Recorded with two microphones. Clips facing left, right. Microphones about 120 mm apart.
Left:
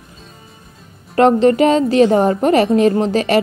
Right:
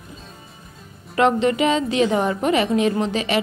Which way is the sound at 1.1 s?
40° left (ahead or behind).